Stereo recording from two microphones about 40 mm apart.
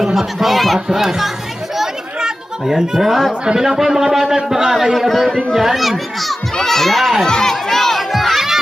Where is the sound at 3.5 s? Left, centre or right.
Centre.